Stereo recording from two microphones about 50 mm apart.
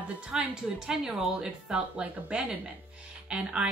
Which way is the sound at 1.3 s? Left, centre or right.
Centre.